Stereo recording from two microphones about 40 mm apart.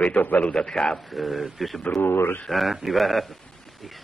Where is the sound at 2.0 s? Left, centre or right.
Left.